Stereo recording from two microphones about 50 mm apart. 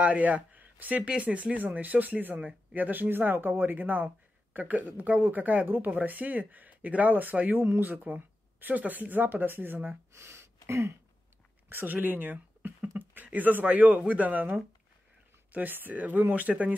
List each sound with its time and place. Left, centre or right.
0.0 s speech: right
9.8 s speech: right
11.7 s speech: right